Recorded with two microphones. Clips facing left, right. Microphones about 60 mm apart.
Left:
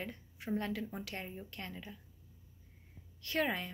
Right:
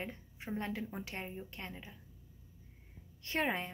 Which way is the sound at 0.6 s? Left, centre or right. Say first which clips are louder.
Left 1 dB; right.